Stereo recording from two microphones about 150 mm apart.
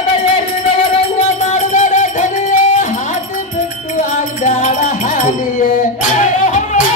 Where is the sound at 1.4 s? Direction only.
55° left (ahead or behind).